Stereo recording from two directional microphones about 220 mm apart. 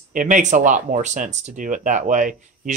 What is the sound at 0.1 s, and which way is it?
Speech, 35° right (ahead or behind).